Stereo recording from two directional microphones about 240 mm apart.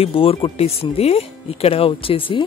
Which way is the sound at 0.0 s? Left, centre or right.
Left.